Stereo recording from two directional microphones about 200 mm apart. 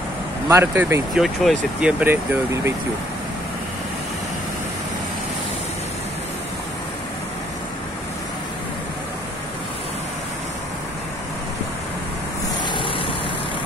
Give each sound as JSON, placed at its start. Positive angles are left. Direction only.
{"t": 0.5, "sound": "speech", "side_deg": -10}
{"t": 1.2, "sound": "speech", "side_deg": 0}
{"t": 12.6, "sound": "vehicle", "side_deg": 25}